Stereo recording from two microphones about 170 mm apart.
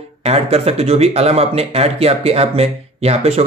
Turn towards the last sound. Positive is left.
turn(degrees=-35)  # may be behind; listen again after turning